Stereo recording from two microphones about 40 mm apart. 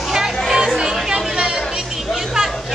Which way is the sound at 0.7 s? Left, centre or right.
Centre.